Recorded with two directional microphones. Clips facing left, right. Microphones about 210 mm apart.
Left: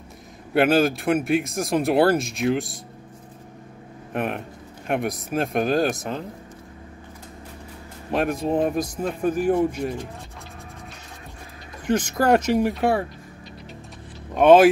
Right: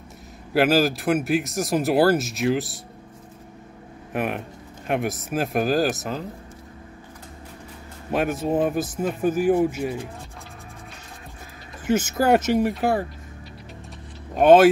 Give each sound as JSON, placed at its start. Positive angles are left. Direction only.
{"t": 0.5, "sound": "a man's voice", "side_deg": 0}
{"t": 4.1, "sound": "a man's voice", "side_deg": -5}
{"t": 8.1, "sound": "a man's voice", "side_deg": -5}
{"t": 11.8, "sound": "a man's voice", "side_deg": -5}
{"t": 14.3, "sound": "speech", "side_deg": 0}